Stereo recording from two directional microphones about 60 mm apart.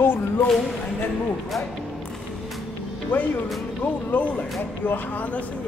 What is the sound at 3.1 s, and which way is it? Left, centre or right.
Speech, left.